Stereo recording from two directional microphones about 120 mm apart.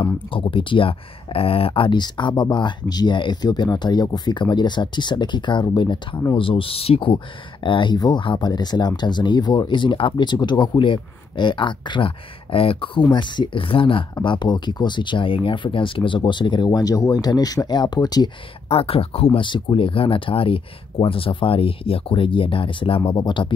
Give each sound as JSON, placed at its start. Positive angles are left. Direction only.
{"t": 0.0, "sound": "speech", "side_deg": 45}
{"t": 18.7, "sound": "speech", "side_deg": 55}